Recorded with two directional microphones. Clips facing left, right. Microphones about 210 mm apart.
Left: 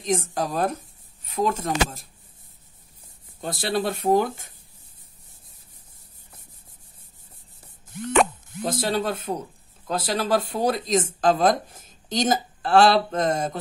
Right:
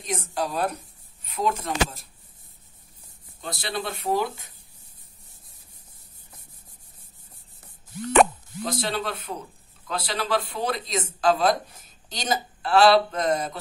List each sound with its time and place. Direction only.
0.0 s speech: 45° left (ahead or behind)
3.3 s speech: 45° left (ahead or behind)
8.6 s speech: 45° left (ahead or behind)